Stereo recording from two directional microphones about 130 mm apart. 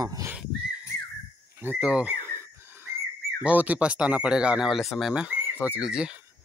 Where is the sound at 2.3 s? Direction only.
20° right (ahead or behind).